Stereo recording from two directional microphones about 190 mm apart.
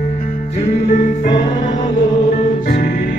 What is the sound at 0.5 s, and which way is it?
Music, 35° left (ahead or behind).